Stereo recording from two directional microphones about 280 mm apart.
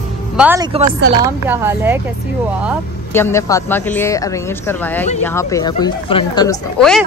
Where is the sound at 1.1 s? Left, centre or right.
Centre.